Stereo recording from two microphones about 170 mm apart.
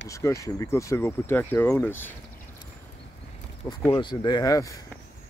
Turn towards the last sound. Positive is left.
turn(degrees=20)  # may be behind; listen again after turning